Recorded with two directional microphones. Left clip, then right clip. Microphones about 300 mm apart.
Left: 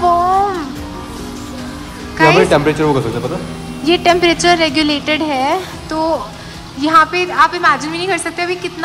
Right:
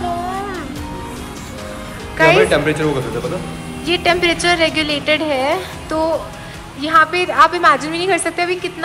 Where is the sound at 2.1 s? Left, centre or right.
Centre.